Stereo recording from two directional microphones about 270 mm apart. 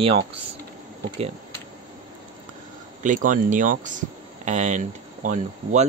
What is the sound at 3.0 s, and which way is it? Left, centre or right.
Speech, right.